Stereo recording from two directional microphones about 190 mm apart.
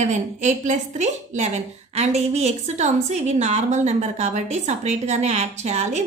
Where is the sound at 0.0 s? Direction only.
40° right (ahead or behind).